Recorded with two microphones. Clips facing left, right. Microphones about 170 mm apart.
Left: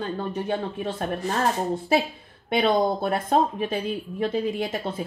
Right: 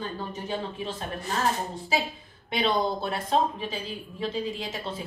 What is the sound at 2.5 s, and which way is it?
A woman's voice, 50° left (ahead or behind).